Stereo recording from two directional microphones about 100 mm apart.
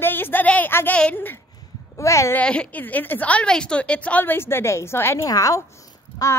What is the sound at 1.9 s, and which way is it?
Speech, 30° left (ahead or behind).